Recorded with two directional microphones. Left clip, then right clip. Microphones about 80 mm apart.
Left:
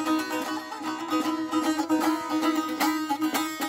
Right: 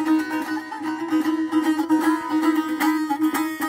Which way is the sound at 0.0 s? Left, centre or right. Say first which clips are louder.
Right 5 dB; left.